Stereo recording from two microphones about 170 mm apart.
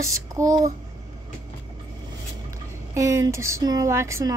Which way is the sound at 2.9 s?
15° right (ahead or behind).